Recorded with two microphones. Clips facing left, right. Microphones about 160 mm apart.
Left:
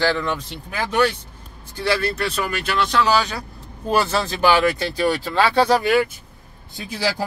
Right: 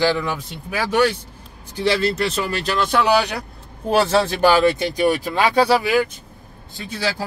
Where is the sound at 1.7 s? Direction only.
20° right (ahead or behind); by 2.9 s 40° right (ahead or behind).